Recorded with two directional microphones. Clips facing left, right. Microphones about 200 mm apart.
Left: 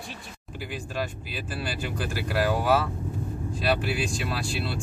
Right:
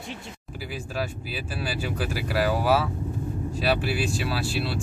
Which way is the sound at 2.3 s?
5° right (ahead or behind).